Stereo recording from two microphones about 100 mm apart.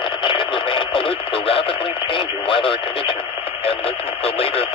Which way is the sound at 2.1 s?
60° left (ahead or behind).